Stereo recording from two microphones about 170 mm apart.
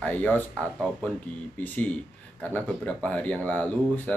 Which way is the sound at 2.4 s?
10° left (ahead or behind).